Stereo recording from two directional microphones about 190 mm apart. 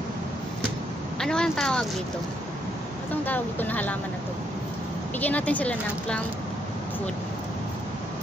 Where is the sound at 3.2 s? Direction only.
10° left (ahead or behind).